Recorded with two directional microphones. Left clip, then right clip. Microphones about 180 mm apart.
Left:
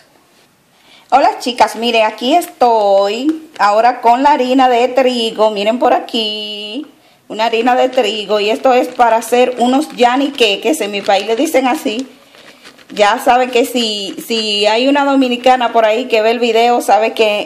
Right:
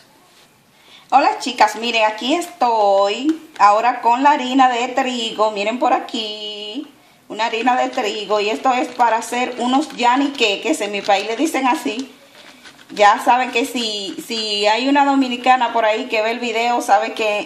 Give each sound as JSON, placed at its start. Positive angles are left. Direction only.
{"t": 1.1, "sound": "a woman's voice", "side_deg": 45}